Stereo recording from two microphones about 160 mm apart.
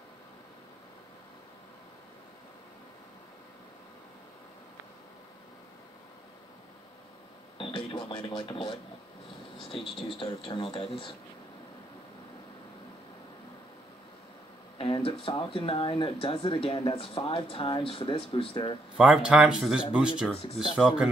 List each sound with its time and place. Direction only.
7.5 s speech: 30° left (ahead or behind)
10.0 s speech: 35° left (ahead or behind)
14.8 s speech: 35° left (ahead or behind)
18.9 s speech: 5° right (ahead or behind)